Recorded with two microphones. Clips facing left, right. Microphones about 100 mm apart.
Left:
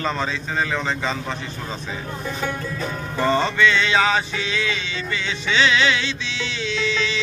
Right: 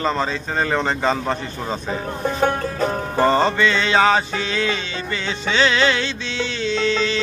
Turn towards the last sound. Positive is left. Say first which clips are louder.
# right 4 dB
turn(degrees=-45)  # may be behind; listen again after turning